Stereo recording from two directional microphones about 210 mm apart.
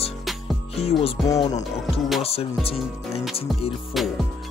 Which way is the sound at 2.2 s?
30° left (ahead or behind).